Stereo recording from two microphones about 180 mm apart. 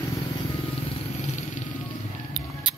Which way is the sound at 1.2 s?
40° left (ahead or behind).